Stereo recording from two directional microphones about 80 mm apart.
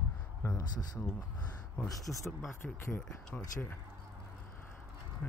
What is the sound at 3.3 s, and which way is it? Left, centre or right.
Speech, left.